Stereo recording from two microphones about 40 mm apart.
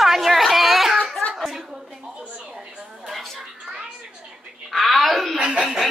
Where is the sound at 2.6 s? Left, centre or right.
Right.